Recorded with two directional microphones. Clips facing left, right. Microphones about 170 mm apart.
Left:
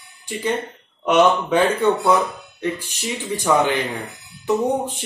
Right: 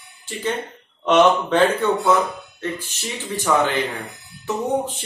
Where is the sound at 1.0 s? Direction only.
10° left (ahead or behind).